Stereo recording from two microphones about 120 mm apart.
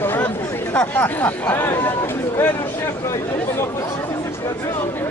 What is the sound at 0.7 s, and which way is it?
Speech, 15° left (ahead or behind).